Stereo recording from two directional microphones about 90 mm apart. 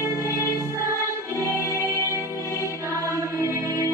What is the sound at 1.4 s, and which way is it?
Music, 35° right (ahead or behind).